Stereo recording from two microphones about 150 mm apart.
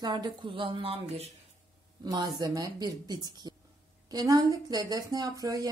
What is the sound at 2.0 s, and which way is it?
A woman's voice, 25° right (ahead or behind).